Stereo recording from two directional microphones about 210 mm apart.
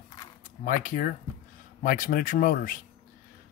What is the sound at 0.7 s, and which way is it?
Speech, 40° left (ahead or behind).